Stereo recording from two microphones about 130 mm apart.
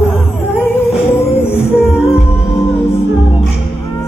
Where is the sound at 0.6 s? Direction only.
15° left (ahead or behind).